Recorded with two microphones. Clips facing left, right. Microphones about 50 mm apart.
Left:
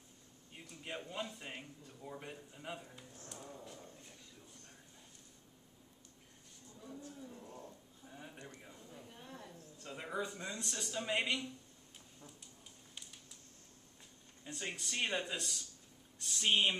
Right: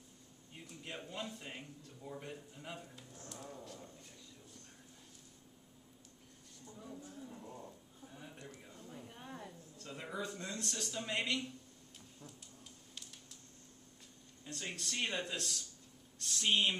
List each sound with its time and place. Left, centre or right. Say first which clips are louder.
0.8 s a man's voice: left 2 dB; centre
7.1 s pigeon: right 1 dB; centre
8.0 s a sound: even; centre
8.8 s a sound: right 5 dB; centre
9.8 s a man's voice: left 2 dB; centre
14.4 s a man's voice: left 1 dB; centre